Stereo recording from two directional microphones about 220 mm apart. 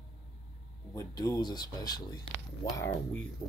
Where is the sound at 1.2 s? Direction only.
20° left (ahead or behind).